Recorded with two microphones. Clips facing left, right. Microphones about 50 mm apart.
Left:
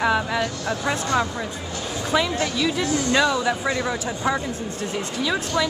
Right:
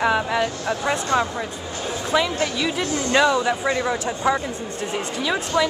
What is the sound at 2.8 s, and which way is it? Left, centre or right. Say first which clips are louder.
Speech: even; right.